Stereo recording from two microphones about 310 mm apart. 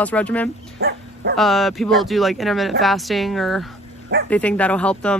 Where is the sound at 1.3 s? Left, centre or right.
Centre.